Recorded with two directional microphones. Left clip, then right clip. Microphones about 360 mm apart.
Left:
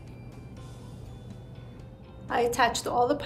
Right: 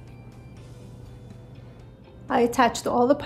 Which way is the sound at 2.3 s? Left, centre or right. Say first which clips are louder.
Right 4 dB; right.